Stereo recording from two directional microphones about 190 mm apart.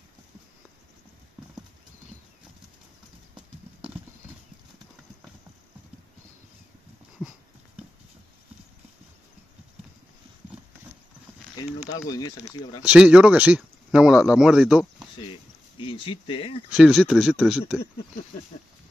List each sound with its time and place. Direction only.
11.5 s speech: 20° left (ahead or behind)
12.8 s speech: 5° right (ahead or behind)
15.8 s speech: 25° left (ahead or behind)
16.7 s speech: centre (ahead or behind)